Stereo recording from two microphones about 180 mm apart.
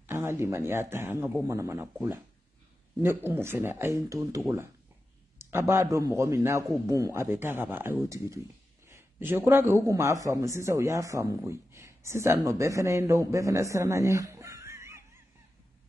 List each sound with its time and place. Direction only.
0.0 s a man's voice: 15° right (ahead or behind)
5.4 s a man's voice: 15° right (ahead or behind)